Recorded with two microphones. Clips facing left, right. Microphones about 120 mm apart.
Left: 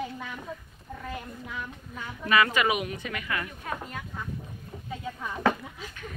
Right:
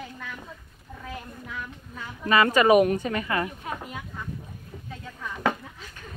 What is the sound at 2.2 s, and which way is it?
A woman's voice, 35° right (ahead or behind).